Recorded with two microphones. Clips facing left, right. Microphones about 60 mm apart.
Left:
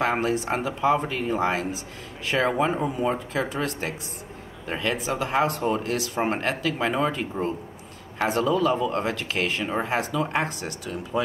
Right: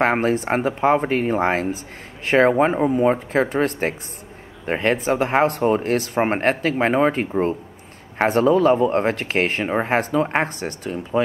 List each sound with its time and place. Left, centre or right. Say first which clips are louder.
0.0 s speech: right 5 dB; right